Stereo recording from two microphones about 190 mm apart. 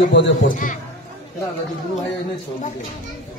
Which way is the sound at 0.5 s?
45° left (ahead or behind).